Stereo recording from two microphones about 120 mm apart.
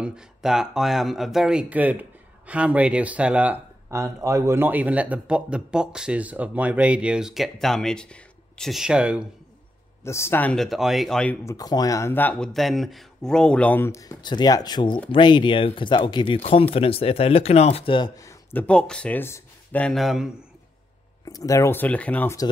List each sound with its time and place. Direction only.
0.0 s speech: 5° right (ahead or behind)
3.9 s speech: 25° right (ahead or behind); by 9.3 s 10° right (ahead or behind)
10.0 s speech: 20° left (ahead or behind)
10.5 s speech: centre (ahead or behind)
11.4 s speech: 30° left (ahead or behind); by 12.4 s 15° left (ahead or behind)
12.5 s speech: centre (ahead or behind); by 14.1 s 25° left (ahead or behind)
14.2 s speech: 35° left (ahead or behind)
16.7 s speech: 50° left (ahead or behind)
17.9 s speech: 35° left (ahead or behind)
18.5 s speech: 10° left (ahead or behind)
19.9 s speech: centre (ahead or behind)
21.3 s speech: 30° left (ahead or behind)